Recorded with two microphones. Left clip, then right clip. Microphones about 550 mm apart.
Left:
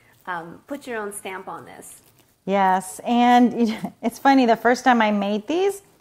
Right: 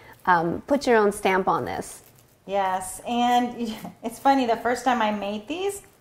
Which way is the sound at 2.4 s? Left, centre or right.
Left.